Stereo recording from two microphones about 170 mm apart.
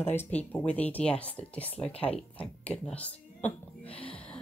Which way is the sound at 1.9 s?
35° left (ahead or behind).